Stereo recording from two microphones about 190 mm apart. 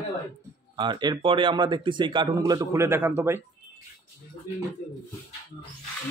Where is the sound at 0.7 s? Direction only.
25° right (ahead or behind).